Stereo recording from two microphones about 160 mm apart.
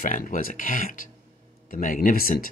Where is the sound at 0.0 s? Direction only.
60° left (ahead or behind).